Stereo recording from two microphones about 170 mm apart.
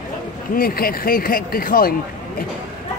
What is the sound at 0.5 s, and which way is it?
Speech, 60° left (ahead or behind).